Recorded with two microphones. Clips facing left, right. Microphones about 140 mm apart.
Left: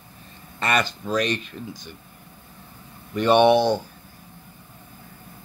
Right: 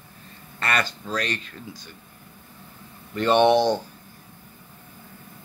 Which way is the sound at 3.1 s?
15° left (ahead or behind).